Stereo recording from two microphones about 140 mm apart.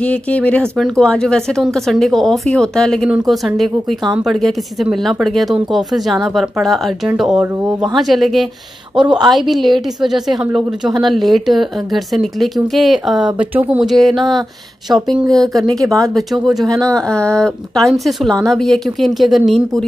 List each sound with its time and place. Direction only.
0.0 s a woman's voice: 10° left (ahead or behind)
15.8 s speech: 25° right (ahead or behind)
16.2 s a woman's voice: centre (ahead or behind)